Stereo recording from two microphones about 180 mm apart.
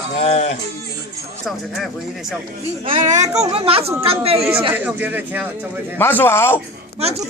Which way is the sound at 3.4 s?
30° right (ahead or behind).